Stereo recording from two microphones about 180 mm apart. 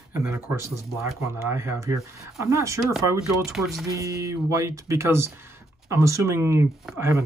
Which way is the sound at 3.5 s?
Centre (ahead or behind).